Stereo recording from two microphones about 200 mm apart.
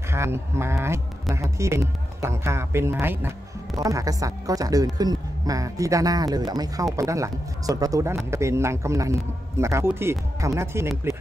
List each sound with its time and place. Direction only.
0.1 s speech: 15° right (ahead or behind)